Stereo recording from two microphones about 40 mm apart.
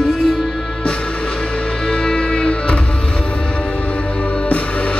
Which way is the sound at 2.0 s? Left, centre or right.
Centre.